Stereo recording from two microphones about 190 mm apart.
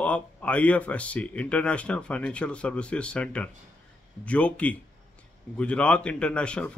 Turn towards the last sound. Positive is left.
turn(degrees=5)  # may be behind; listen again after turning